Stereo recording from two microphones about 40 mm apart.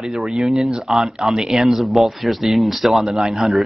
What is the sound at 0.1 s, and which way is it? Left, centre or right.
Speech, centre.